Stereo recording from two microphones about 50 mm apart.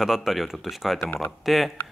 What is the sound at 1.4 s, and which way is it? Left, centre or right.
Speech, centre.